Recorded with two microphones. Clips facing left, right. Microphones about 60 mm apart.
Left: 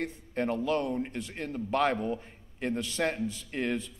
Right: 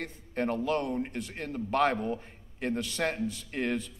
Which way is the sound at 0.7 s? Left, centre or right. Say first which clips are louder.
Even; right.